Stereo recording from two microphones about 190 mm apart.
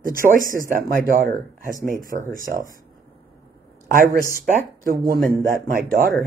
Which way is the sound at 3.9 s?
45° right (ahead or behind).